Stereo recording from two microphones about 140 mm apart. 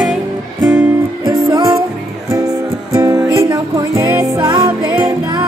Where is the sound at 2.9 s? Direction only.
25° right (ahead or behind).